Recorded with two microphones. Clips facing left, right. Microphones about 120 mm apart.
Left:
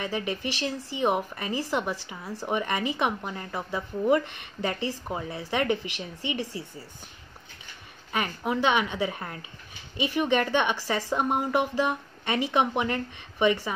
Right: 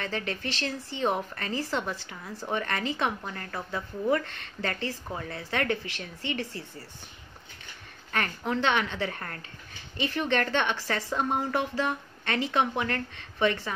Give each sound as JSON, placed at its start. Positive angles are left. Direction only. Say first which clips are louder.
{"t": 0.0, "sound": "speech", "louder": "left 3 dB", "side_deg": 15}
{"t": 8.1, "sound": "speech", "louder": "left 1 dB", "side_deg": 10}